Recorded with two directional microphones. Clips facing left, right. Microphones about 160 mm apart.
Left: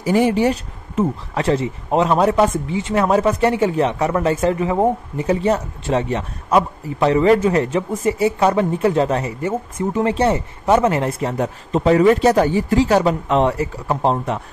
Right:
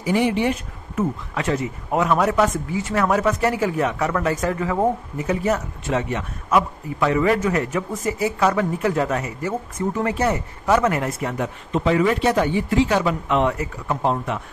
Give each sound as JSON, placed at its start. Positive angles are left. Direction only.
{"t": 0.0, "sound": "speech", "side_deg": 40}